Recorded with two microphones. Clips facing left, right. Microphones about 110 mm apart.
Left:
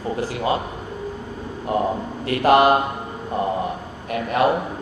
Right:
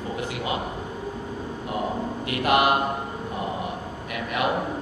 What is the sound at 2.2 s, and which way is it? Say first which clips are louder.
Speech: left 6 dB; 35° left (ahead or behind).